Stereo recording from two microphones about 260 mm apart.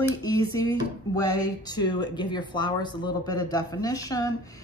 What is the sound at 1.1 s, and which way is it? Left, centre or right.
A woman's voice, centre.